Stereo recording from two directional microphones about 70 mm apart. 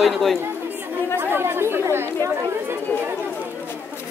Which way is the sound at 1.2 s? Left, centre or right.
Right.